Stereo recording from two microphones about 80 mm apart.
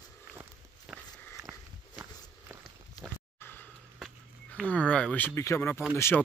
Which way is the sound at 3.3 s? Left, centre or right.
Left.